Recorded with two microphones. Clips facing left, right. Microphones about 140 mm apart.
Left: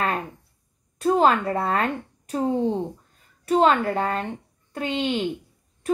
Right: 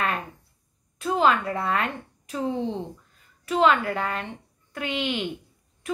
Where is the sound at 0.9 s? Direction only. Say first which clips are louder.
Left 3 dB; 40° left (ahead or behind).